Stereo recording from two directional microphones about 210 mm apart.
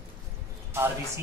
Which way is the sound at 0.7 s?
10° right (ahead or behind).